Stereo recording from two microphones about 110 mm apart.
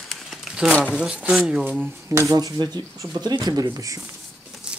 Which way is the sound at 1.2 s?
5° right (ahead or behind).